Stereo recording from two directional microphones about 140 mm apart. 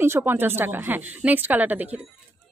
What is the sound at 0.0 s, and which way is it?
A woman's voice, 15° right (ahead or behind).